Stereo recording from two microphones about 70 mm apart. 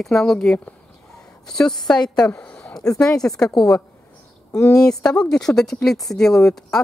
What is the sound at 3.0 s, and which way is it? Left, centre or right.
Speech, centre.